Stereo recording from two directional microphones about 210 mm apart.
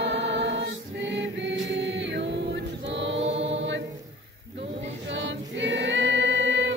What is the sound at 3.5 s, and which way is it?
Music, 60° right (ahead or behind).